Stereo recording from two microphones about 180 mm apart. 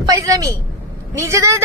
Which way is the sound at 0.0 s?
20° right (ahead or behind).